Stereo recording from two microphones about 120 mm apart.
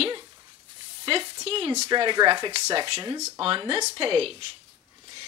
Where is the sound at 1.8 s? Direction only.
40° right (ahead or behind).